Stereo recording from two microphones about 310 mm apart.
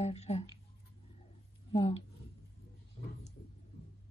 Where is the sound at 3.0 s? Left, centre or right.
Left.